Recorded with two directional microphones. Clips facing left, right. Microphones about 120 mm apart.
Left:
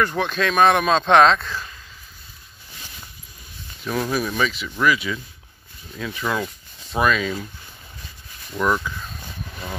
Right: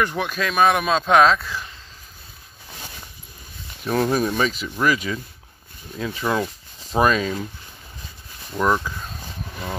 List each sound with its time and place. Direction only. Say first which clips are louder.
0.0 s speech: left 2 dB; 10° right (ahead or behind)
3.8 s speech: right 3 dB; 35° right (ahead or behind)
6.2 s speech: right 2 dB; 20° right (ahead or behind)
6.9 s speech: right 2 dB; 40° right (ahead or behind)
8.5 s speech: right 1 dB; 15° right (ahead or behind)